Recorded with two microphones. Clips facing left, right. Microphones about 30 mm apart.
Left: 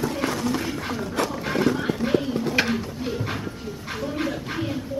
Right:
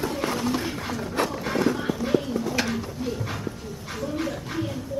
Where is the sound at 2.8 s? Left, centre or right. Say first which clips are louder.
Left 1 dB; left.